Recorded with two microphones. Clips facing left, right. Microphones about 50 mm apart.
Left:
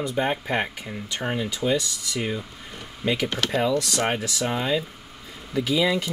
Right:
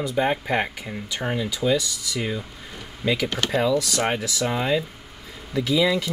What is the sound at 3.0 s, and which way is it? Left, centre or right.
Speech, centre.